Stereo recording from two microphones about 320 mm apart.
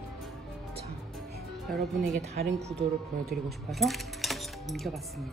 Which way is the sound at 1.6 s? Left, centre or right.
Centre.